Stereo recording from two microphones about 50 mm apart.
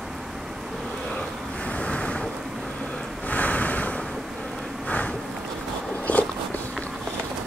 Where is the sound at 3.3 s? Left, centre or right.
Left.